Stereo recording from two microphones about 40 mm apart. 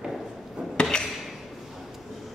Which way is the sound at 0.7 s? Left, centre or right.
Left.